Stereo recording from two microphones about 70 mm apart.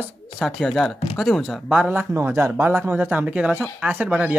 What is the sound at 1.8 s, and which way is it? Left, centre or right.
Speech, right.